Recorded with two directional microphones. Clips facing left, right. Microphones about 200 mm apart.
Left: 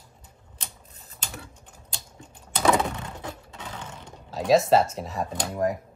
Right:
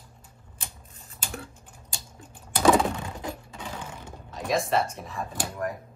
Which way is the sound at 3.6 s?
10° right (ahead or behind).